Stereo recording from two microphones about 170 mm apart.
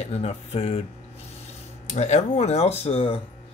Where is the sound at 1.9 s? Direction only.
40° left (ahead or behind).